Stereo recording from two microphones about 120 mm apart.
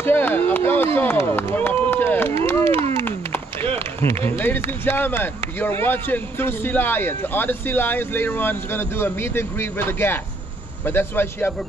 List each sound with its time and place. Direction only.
0.0 s a sound: 15° left (ahead or behind)
0.9 s run: 15° left (ahead or behind)
4.8 s speech: 15° left (ahead or behind)